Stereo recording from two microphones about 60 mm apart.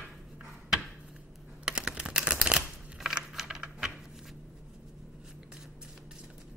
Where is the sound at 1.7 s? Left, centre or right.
Centre.